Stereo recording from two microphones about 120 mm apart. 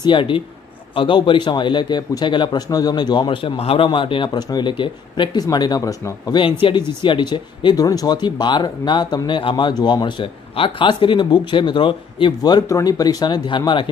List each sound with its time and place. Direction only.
0.0 s a man's voice: 45° left (ahead or behind); by 6.4 s 30° left (ahead or behind)
6.6 s a man's voice: 45° left (ahead or behind)